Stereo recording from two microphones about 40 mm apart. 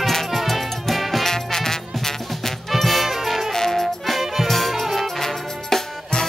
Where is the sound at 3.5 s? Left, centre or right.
Centre.